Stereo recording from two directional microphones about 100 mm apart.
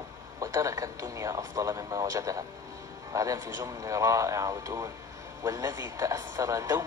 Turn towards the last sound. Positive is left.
turn(degrees=-30)  # may be behind; listen again after turning